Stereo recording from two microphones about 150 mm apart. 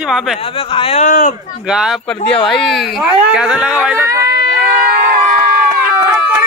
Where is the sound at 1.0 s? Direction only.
60° left (ahead or behind).